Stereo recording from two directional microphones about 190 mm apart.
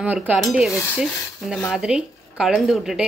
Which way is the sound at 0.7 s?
15° left (ahead or behind).